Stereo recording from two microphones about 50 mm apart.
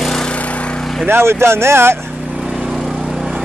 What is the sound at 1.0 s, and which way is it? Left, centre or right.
Speech, right.